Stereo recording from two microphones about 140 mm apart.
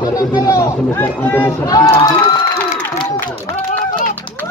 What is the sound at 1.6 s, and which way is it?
Speech, 25° left (ahead or behind).